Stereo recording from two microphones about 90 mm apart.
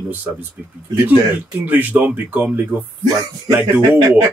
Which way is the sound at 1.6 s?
20° right (ahead or behind).